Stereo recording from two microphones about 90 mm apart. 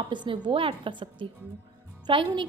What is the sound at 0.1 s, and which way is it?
A woman's voice, 60° right (ahead or behind).